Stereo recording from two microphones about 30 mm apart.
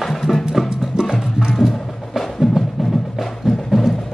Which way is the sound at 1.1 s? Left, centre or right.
Right.